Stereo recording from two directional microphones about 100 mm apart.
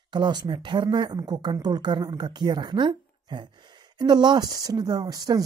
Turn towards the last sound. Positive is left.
turn(degrees=-40)  # may be behind; listen again after turning